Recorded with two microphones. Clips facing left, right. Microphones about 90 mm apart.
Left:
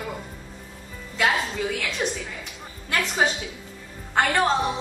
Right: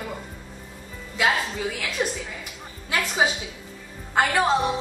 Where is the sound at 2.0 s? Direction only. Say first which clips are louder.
Right 1 dB; centre (ahead or behind).